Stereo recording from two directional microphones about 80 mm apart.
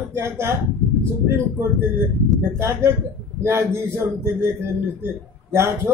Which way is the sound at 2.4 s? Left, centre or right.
Right.